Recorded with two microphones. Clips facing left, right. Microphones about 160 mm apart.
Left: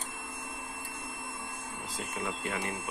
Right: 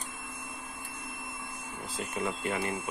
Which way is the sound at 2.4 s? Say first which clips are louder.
Right 3 dB; centre (ahead or behind).